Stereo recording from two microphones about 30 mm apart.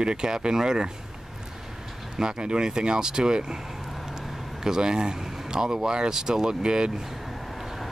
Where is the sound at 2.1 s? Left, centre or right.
Right.